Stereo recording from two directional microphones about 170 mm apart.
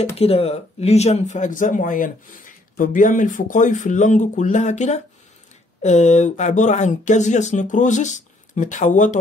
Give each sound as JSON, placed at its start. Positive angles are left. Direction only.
{"t": 0.2, "sound": "speech", "side_deg": 35}